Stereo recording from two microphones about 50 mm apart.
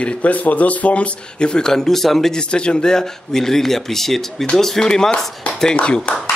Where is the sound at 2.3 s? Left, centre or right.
Centre.